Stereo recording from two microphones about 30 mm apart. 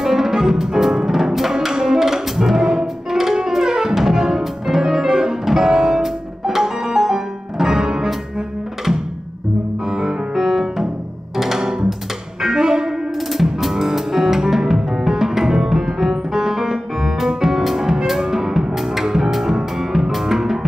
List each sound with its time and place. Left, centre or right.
0.0 s music: centre
3.9 s music: centre
6.0 s music: centre; by 8.1 s right
9.8 s music: centre
12.4 s music: right
13.3 s music: centre